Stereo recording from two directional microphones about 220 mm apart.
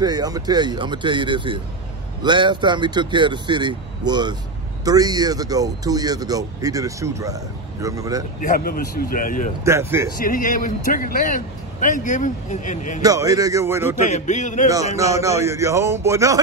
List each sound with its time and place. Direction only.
0.0 s speech: 20° right (ahead or behind)
8.4 s a man's voice: 40° left (ahead or behind)
9.7 s speech: 10° right (ahead or behind)
10.1 s a man's voice: 40° left (ahead or behind)
13.0 s speech: 15° right (ahead or behind)
14.0 s a man's voice: 35° left (ahead or behind)
15.0 s speech: 15° right (ahead or behind)